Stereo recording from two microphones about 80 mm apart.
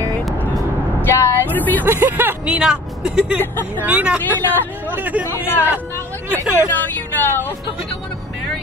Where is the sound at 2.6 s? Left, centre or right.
Centre.